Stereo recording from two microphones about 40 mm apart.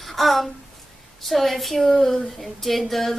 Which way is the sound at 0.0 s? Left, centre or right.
Centre.